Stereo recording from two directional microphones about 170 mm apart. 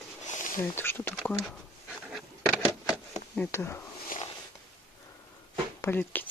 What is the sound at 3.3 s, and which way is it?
Speech, 15° left (ahead or behind).